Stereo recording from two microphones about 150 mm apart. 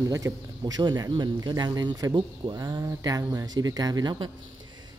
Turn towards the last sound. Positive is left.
turn(degrees=-25)  # may be behind; listen again after turning